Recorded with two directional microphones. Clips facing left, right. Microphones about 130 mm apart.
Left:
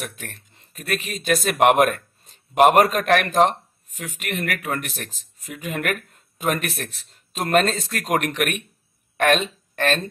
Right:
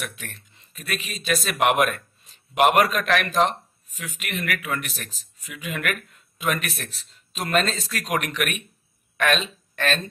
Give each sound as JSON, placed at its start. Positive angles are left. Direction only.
{"t": 0.0, "sound": "a woman's voice", "side_deg": 45}